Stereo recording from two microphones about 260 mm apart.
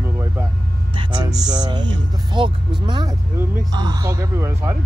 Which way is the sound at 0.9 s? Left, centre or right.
Centre.